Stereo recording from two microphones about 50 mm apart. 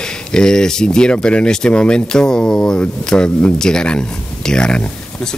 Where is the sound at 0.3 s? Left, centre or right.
Centre.